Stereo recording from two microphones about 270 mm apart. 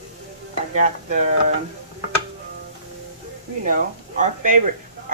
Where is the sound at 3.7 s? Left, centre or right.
Right.